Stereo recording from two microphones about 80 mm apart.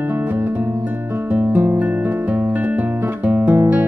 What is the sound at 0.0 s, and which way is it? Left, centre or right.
Music, right.